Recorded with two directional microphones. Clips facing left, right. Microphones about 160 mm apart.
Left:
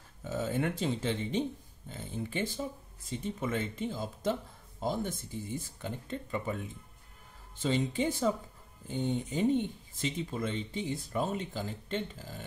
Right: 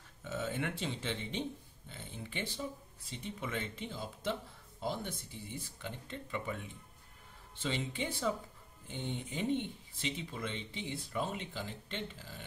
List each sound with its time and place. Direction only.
0.2 s a woman's voice: 40° left (ahead or behind)